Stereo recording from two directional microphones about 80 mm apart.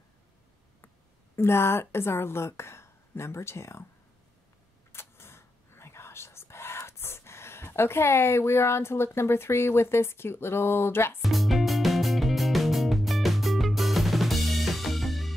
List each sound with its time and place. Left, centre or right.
1.3 s a woman's voice: left
4.9 s whispering: left
11.2 s music: centre